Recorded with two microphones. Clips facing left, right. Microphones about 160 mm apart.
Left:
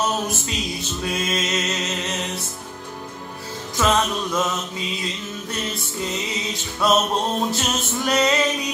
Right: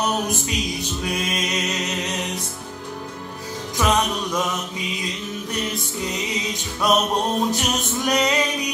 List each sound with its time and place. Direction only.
0.0 s music: 15° right (ahead or behind)
3.7 s music: 15° right (ahead or behind)
6.5 s music: 15° right (ahead or behind)